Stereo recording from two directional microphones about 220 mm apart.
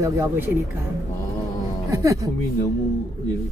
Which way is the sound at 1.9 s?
15° right (ahead or behind).